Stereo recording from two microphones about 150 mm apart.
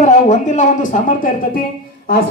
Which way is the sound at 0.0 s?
55° left (ahead or behind).